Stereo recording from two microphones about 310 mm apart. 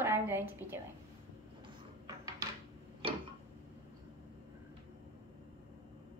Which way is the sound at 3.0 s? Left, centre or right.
Centre.